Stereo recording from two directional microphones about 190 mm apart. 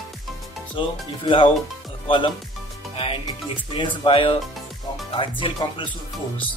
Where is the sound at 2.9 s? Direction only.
30° left (ahead or behind).